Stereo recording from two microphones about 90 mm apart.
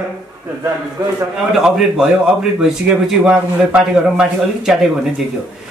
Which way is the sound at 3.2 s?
15° right (ahead or behind).